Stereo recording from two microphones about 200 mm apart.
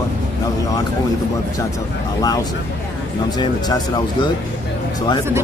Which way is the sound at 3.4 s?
20° left (ahead or behind).